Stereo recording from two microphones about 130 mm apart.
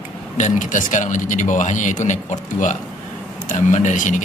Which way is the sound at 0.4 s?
80° left.